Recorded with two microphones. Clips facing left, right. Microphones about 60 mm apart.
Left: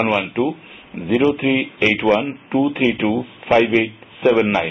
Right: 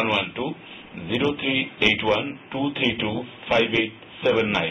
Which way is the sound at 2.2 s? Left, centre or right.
Centre.